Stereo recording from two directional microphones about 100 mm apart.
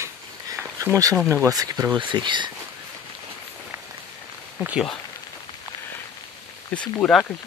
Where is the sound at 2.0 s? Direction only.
50° right (ahead or behind).